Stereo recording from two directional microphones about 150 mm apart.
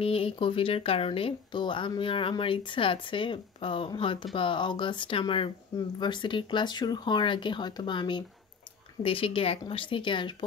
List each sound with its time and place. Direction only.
0.0 s speech: 40° left (ahead or behind)